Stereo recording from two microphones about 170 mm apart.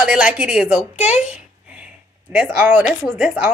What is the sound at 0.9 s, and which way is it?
Speech, 40° left (ahead or behind).